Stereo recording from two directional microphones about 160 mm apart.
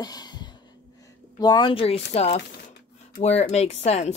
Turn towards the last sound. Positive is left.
turn(degrees=45)  # may be behind; listen again after turning